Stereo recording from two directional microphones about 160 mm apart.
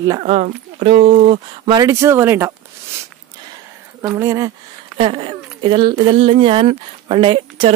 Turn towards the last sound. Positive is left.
turn(degrees=-35)  # may be behind; listen again after turning